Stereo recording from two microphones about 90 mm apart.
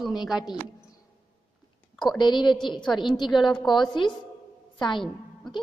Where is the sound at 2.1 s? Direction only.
55° left (ahead or behind).